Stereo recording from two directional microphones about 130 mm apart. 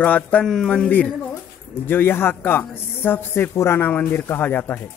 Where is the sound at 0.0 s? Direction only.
10° left (ahead or behind).